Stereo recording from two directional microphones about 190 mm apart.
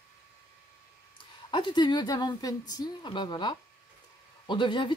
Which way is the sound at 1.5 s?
25° left (ahead or behind).